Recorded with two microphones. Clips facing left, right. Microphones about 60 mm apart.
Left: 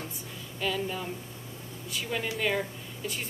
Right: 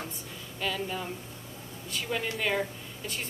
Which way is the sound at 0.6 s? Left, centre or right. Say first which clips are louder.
Left 1 dB; centre.